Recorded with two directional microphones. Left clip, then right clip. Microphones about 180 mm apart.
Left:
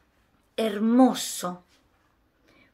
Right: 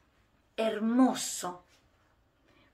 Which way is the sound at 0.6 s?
40° left (ahead or behind).